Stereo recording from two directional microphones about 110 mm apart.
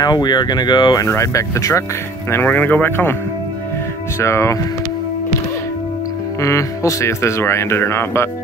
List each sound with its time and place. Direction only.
0.0 s speech: 40° left (ahead or behind)
1.0 s speech: 25° left (ahead or behind)
2.3 s speech: 15° left (ahead or behind)
4.2 s speech: 25° left (ahead or behind)
6.4 s speech: 30° left (ahead or behind)